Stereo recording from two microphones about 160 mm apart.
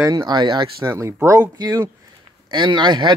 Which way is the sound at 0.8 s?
15° right (ahead or behind).